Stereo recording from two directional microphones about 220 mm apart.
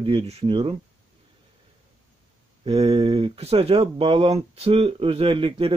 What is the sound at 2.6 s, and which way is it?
Speech, 25° right (ahead or behind).